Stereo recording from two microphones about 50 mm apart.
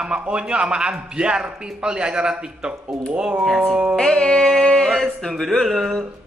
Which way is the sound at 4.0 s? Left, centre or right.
Centre.